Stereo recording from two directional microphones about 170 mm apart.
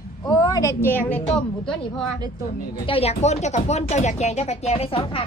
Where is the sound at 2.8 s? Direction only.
35° left (ahead or behind).